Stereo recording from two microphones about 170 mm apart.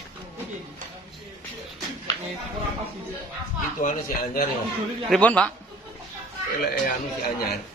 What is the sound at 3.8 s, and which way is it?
Speech, 55° left (ahead or behind).